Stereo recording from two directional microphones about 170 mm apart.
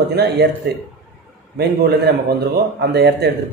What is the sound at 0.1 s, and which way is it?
Speech, 70° right (ahead or behind).